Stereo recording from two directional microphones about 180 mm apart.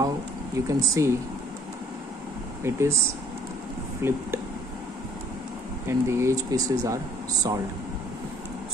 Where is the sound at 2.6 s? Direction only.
15° right (ahead or behind).